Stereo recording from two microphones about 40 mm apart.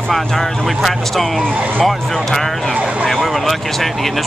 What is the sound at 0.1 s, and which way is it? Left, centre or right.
Speech, centre.